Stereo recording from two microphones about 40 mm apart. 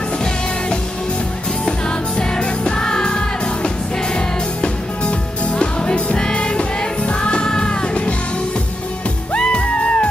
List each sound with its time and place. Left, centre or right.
1.7 s music: left
5.6 s music: left
9.3 s music: left